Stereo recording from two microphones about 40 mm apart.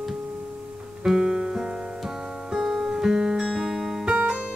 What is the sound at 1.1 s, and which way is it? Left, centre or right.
Music, centre.